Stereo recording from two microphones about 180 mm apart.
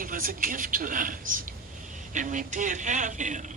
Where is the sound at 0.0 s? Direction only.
50° right (ahead or behind).